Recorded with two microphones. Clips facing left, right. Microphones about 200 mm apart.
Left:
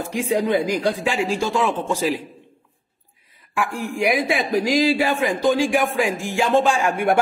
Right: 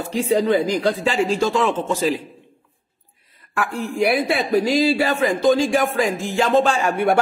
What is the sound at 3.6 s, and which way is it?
A man's voice, 10° left (ahead or behind).